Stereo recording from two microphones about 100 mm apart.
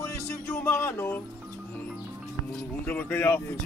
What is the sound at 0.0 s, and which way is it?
Music, 20° left (ahead or behind).